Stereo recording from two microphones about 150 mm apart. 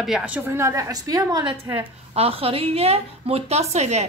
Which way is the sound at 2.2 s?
40° right (ahead or behind).